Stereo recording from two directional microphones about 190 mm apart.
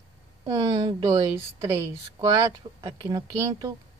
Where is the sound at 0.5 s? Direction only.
20° right (ahead or behind).